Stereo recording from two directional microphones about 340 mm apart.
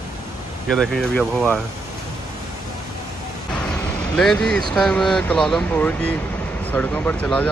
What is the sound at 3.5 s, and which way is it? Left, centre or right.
Vehicle, centre.